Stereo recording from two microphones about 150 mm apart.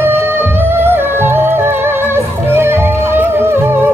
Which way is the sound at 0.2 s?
15° right (ahead or behind).